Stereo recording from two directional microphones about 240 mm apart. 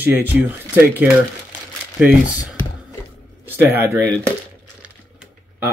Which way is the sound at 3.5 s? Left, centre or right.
Centre.